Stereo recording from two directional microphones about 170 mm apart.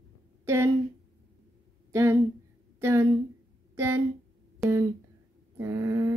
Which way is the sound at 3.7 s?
15° right (ahead or behind).